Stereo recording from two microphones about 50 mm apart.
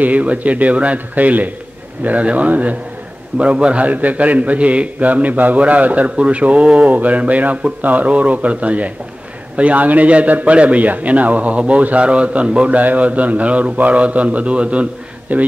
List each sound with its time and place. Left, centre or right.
0.0 s a man's voice: right